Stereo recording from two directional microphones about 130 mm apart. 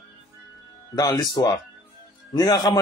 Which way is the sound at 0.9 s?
30° left (ahead or behind).